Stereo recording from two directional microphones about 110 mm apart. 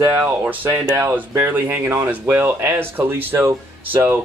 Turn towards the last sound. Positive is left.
turn(degrees=-20)  # may be behind; listen again after turning